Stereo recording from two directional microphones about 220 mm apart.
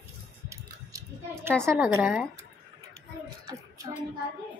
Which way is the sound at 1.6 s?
10° right (ahead or behind).